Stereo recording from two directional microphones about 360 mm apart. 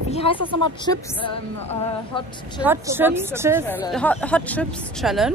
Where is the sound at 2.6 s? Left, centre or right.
Centre.